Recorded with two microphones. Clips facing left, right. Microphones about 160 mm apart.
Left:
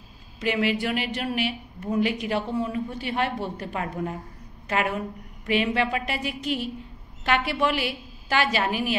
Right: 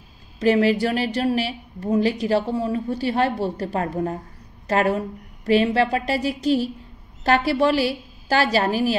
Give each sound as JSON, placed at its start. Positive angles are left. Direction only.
{"t": 0.4, "sound": "a woman's voice", "side_deg": -40}